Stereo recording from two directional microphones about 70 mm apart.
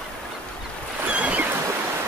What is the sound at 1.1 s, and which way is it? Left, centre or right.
Boat, centre.